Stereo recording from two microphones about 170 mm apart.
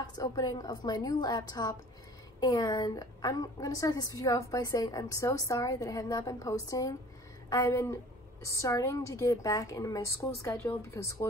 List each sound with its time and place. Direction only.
0.0 s a woman's voice: 20° left (ahead or behind)